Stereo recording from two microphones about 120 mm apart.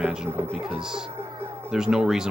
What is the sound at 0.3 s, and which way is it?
Speech, 20° right (ahead or behind).